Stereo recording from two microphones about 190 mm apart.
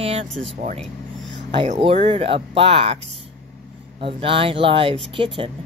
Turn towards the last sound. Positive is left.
turn(degrees=-25)  # may be behind; listen again after turning